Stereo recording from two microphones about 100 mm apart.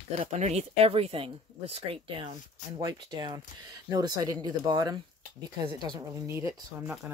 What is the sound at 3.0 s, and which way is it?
Speech, 50° right (ahead or behind).